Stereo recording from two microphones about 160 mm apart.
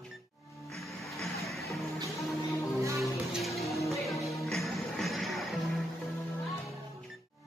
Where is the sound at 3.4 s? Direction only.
Centre (ahead or behind).